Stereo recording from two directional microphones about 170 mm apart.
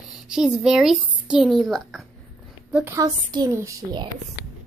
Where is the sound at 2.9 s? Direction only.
25° right (ahead or behind).